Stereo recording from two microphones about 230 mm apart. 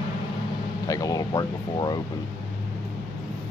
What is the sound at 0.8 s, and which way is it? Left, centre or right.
Speech, centre.